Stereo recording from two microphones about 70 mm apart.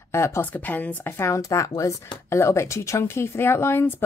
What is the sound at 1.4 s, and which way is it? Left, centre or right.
Speech, left.